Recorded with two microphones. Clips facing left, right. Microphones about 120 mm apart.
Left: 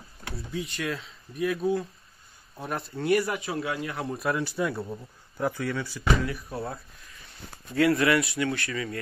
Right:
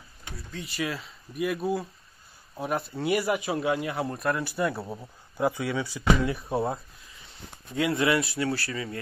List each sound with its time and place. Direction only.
0.6 s a man's voice: 5° right (ahead or behind)
3.9 s speech: centre (ahead or behind)
4.9 s a man's voice: 15° right (ahead or behind)
6.3 s speech: 25° right (ahead or behind)